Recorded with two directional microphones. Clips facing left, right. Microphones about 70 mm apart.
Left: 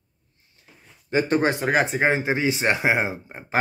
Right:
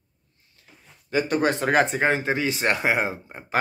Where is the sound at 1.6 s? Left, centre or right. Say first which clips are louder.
Even; centre.